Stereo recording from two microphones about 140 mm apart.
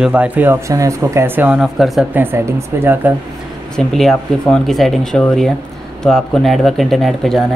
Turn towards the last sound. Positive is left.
turn(degrees=0)  # may be behind; listen again after turning